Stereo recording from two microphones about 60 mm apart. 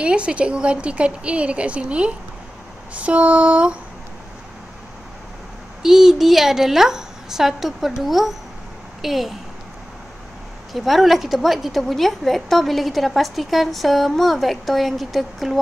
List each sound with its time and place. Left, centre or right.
0.0 s a woman's voice: centre
5.8 s a woman's voice: centre
10.7 s a woman's voice: centre